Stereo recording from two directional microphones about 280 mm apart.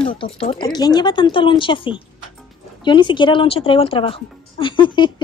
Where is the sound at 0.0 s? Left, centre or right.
Centre.